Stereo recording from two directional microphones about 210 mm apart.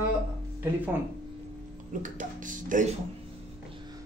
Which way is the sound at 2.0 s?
40° right (ahead or behind).